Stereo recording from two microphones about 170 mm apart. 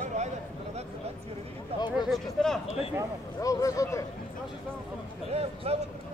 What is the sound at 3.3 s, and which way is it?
Speech, 20° left (ahead or behind).